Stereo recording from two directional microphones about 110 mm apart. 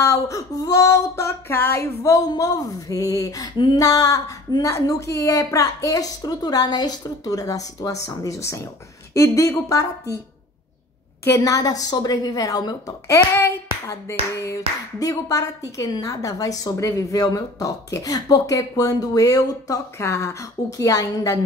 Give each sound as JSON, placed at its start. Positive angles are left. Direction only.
{"t": 0.0, "sound": "a woman's voice", "side_deg": 30}
{"t": 11.2, "sound": "a woman's voice", "side_deg": 30}